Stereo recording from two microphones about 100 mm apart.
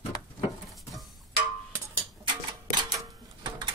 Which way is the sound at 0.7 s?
Centre (ahead or behind).